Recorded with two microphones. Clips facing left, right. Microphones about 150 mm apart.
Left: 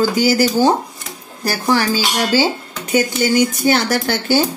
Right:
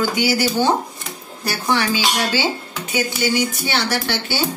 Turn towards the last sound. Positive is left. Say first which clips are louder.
# left 6 dB
turn(degrees=45)  # may be behind; listen again after turning